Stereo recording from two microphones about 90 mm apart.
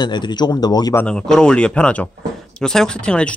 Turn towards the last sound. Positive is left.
turn(degrees=10)  # may be behind; listen again after turning